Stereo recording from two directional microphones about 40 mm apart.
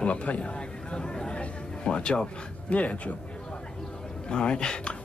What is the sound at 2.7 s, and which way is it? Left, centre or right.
Speech, left.